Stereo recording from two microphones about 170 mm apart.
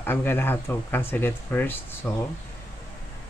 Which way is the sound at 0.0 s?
15° left (ahead or behind).